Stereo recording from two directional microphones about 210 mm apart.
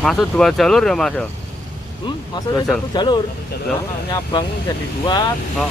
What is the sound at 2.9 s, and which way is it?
Speech, 20° left (ahead or behind).